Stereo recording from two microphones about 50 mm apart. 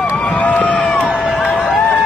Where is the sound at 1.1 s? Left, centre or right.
Centre.